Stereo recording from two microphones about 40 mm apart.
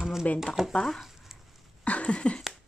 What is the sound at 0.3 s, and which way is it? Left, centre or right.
Speech, left.